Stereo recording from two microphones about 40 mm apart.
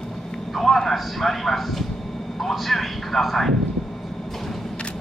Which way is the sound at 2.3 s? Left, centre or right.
Centre.